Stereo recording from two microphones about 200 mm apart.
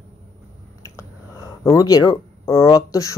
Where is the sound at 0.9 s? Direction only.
15° left (ahead or behind).